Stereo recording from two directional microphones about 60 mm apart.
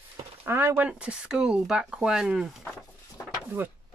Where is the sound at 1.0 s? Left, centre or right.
Centre.